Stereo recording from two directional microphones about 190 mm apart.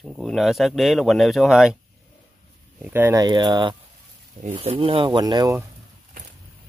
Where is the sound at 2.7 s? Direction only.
10° right (ahead or behind).